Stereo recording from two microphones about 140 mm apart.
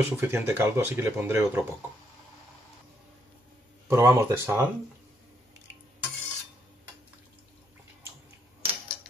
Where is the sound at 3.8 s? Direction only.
20° right (ahead or behind).